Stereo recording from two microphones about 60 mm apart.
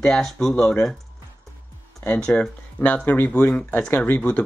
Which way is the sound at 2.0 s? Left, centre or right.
Centre.